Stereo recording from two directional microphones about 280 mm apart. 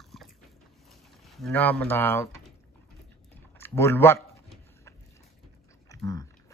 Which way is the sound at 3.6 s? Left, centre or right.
Centre.